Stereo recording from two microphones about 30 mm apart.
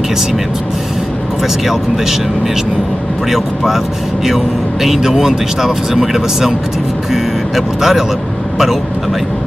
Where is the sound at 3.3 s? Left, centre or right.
Centre.